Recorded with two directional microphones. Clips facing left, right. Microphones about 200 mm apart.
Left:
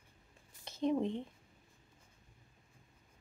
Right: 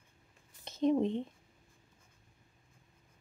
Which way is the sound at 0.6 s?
20° right (ahead or behind).